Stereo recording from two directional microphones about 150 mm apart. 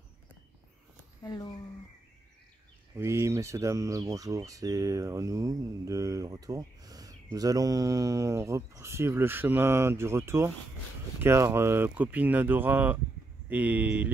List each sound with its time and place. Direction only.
1.2 s speech: 25° left (ahead or behind)
3.0 s speech: 20° right (ahead or behind)